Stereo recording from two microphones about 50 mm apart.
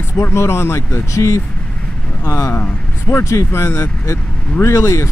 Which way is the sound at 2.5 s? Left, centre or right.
Left.